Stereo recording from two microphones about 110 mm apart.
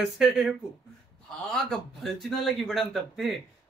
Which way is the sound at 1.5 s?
5° left (ahead or behind).